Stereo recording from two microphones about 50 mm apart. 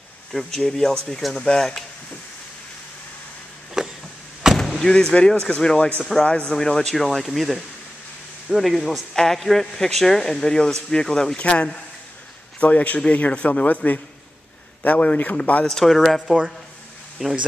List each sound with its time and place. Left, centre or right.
0.3 s speech: centre
3.8 s a sound: centre
4.6 s speech: centre
6.5 s speech: centre
11.3 s a man's voice: left
15.6 s speech: centre
17.2 s speech: centre